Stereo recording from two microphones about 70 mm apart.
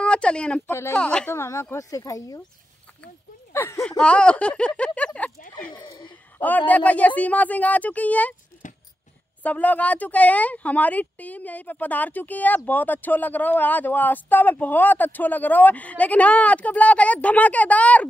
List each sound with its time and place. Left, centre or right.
0.0 s speech: centre
0.7 s speech: left
0.9 s speech: centre
1.3 s speech: left
3.5 s speech: left
4.0 s speech: centre
5.7 s speech: left
6.3 s speech: left
9.4 s speech: left